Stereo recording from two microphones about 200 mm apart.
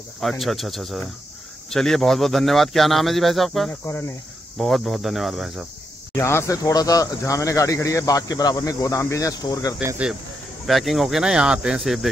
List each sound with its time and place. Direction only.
0.2 s speech: centre (ahead or behind)
6.1 s speech: 15° left (ahead or behind)
9.8 s speech: 5° right (ahead or behind)